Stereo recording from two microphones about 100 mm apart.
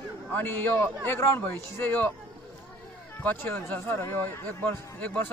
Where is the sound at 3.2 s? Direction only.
20° left (ahead or behind).